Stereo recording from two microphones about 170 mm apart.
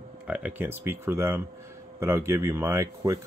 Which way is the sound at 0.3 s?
10° right (ahead or behind).